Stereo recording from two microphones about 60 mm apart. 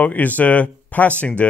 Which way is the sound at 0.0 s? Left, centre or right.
Left.